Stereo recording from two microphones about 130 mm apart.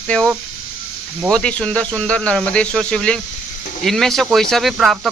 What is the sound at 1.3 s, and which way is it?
Speech, 10° left (ahead or behind).